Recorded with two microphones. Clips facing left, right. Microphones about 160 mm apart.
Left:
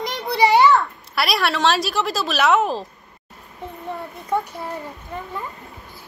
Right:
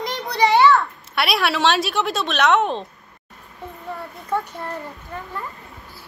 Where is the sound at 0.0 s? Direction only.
Centre (ahead or behind).